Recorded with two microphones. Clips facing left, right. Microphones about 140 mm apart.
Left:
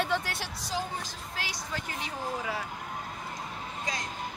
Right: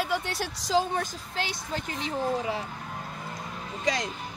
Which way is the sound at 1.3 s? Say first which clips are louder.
Right 5 dB; 25° right (ahead or behind).